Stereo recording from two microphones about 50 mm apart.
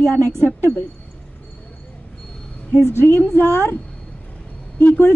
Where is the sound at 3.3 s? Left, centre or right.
Left.